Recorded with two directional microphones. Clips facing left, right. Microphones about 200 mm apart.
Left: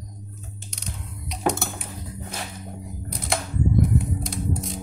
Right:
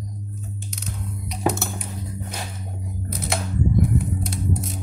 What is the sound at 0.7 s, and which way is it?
Music, 5° right (ahead or behind).